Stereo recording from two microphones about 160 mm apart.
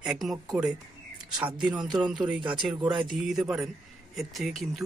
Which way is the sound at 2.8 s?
30° right (ahead or behind).